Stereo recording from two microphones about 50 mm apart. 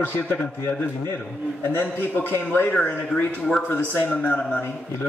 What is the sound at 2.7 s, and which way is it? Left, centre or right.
A man's voice, left.